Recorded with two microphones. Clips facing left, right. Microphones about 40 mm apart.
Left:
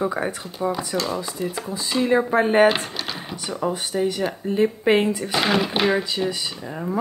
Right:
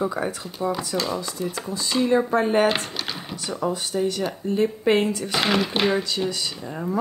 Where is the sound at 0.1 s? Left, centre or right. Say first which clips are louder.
Left 1 dB; left; by 2.1 s centre.